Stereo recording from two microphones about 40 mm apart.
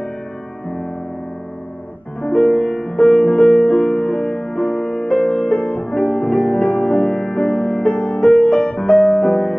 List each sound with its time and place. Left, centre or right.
2.2 s music: centre
5.6 s music: left
6.5 s music: centre
7.9 s music: left
8.3 s music: centre